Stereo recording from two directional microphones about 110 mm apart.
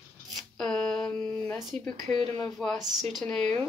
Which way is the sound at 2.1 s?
55° right (ahead or behind).